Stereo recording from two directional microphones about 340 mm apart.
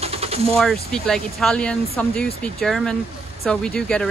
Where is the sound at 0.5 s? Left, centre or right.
Centre.